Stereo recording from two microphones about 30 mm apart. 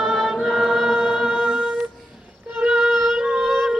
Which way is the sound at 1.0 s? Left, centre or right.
Centre.